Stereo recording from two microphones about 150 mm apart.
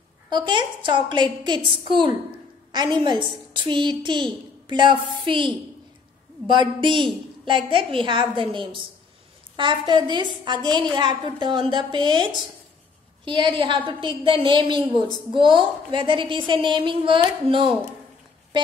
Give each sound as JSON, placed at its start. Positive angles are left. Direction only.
{"t": 0.3, "sound": "a woman's voice", "side_deg": -30}